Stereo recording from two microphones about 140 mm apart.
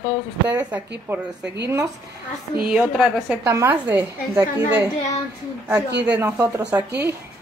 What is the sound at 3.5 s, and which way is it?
Speech, 15° right (ahead or behind).